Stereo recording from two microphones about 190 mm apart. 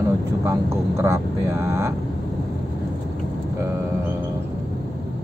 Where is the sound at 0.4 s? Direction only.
15° right (ahead or behind).